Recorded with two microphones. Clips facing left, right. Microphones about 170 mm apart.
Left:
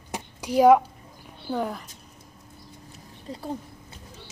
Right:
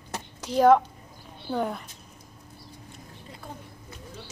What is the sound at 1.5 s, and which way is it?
Speech, centre (ahead or behind).